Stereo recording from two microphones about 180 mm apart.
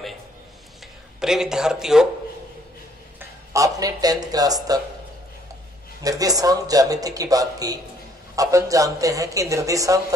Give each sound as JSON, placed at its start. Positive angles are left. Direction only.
{"t": 1.2, "sound": "speech", "side_deg": -5}
{"t": 3.2, "sound": "speech", "side_deg": -20}
{"t": 6.0, "sound": "a man's voice", "side_deg": -20}